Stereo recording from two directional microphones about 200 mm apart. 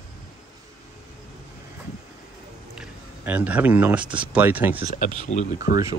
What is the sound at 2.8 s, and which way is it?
Speech, 5° right (ahead or behind).